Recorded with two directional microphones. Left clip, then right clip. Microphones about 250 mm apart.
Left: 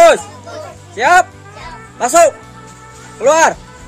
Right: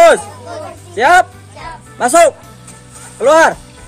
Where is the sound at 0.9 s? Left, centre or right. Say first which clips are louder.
Right 1 dB; centre.